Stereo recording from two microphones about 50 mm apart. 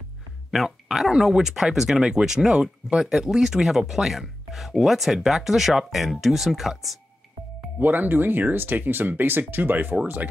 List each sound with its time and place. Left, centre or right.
0.7 s speech: centre
7.8 s speech: right